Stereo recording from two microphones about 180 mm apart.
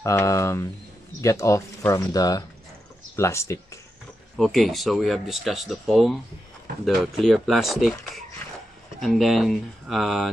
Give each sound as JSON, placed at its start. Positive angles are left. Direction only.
{"t": 0.0, "sound": "speech", "side_deg": 15}
{"t": 4.4, "sound": "speech", "side_deg": 0}